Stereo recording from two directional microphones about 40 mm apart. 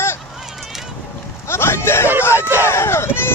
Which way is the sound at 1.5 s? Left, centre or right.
Left.